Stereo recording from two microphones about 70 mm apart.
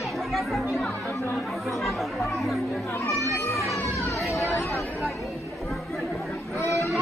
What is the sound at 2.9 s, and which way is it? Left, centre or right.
Children playing, left.